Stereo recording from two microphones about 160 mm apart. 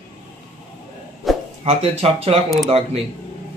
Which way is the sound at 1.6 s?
40° right (ahead or behind).